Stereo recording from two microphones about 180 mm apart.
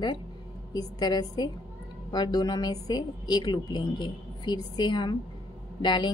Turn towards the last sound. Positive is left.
turn(degrees=25)  # may be behind; listen again after turning